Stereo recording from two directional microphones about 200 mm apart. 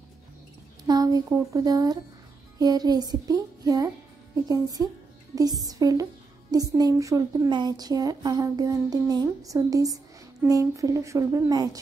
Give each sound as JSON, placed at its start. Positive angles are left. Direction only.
{"t": 0.8, "sound": "a woman's voice", "side_deg": -20}
{"t": 2.6, "sound": "music", "side_deg": -20}
{"t": 4.5, "sound": "a woman's voice", "side_deg": -20}